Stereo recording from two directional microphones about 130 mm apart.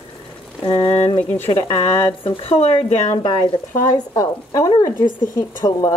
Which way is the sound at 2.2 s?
45° left (ahead or behind).